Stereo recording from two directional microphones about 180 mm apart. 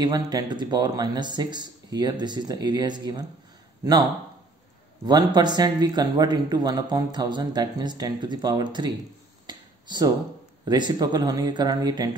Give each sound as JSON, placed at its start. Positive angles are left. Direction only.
{"t": 0.0, "sound": "speech", "side_deg": -20}
{"t": 5.0, "sound": "speech", "side_deg": -25}
{"t": 9.5, "sound": "a sound", "side_deg": -25}
{"t": 10.6, "sound": "speech", "side_deg": -25}